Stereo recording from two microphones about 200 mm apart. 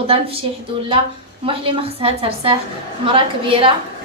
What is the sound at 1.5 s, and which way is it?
A woman's voice, 25° right (ahead or behind).